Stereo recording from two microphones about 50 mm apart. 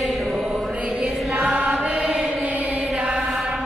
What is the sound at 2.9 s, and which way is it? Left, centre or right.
Mantra, centre.